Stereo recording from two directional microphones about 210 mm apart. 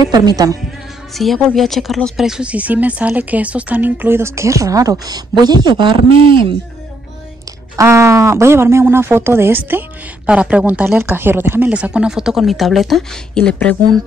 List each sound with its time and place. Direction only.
0.0 s speech: 20° right (ahead or behind)
1.1 s speech: centre (ahead or behind); by 6.4 s 25° right (ahead or behind)
7.7 s speech: 15° right (ahead or behind); by 13.7 s 5° left (ahead or behind)